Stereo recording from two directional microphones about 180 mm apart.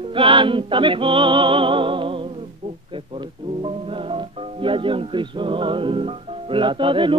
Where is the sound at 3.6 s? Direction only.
30° right (ahead or behind).